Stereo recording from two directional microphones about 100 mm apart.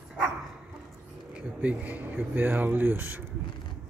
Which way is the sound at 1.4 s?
15° right (ahead or behind).